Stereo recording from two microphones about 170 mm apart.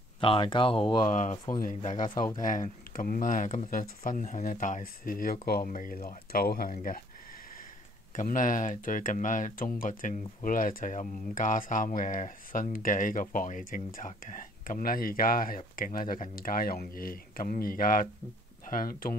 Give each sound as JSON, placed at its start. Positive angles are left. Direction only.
{"t": 0.2, "sound": "speech", "side_deg": 30}
{"t": 1.1, "sound": "speech", "side_deg": 45}
{"t": 8.2, "sound": "speech", "side_deg": 50}